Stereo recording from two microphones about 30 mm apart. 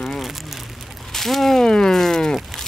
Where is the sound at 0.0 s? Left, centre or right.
Centre.